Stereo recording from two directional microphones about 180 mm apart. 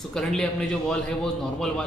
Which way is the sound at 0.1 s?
5° left (ahead or behind).